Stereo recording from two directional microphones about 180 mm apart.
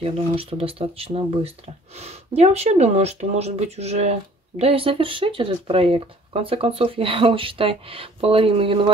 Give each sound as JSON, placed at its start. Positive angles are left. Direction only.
{"t": 0.0, "sound": "speech", "side_deg": -30}